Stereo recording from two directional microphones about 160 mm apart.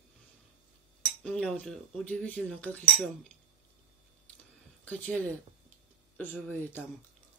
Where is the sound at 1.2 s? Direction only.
5° left (ahead or behind).